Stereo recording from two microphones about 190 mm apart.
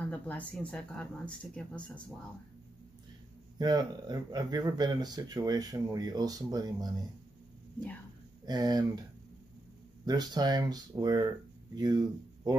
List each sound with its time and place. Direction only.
0.1 s speech: 5° left (ahead or behind)
3.5 s speech: 20° right (ahead or behind)
8.5 s speech: 20° right (ahead or behind)
10.0 s speech: 20° right (ahead or behind)